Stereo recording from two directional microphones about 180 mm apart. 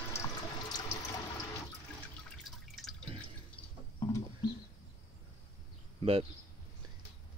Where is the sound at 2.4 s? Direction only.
Centre (ahead or behind).